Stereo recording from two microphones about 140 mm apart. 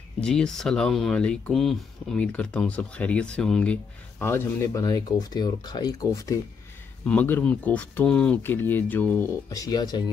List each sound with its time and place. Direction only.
0.2 s speech: 5° left (ahead or behind)
4.8 s speech: 30° left (ahead or behind)
7.1 s speech: 10° left (ahead or behind)
9.5 s speech: 25° left (ahead or behind)